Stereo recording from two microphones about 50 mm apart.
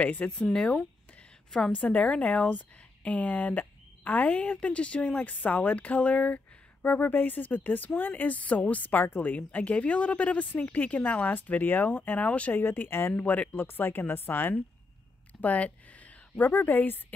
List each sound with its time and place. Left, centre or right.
0.0 s speech: left
1.8 s speech: left
12.5 s speech: left
13.1 s speech: left
13.6 s speech: left
15.4 s speech: left